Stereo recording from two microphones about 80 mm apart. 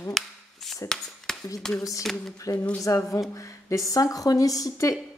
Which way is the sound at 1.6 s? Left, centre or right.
Centre.